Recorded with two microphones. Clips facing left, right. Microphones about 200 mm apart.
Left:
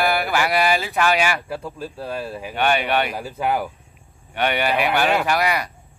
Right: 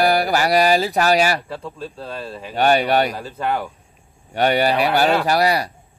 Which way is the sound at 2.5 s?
40° right (ahead or behind).